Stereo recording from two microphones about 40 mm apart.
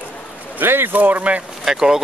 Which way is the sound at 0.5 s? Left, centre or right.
Right.